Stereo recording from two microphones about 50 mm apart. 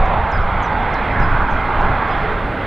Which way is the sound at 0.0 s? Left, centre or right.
Centre.